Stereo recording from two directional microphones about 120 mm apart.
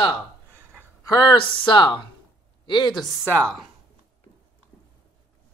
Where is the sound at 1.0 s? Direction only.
35° left (ahead or behind).